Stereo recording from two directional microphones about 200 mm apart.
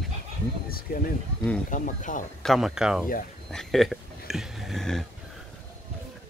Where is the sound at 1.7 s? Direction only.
40° left (ahead or behind).